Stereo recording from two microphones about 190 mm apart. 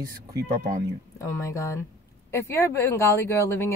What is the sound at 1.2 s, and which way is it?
Speech, 15° left (ahead or behind).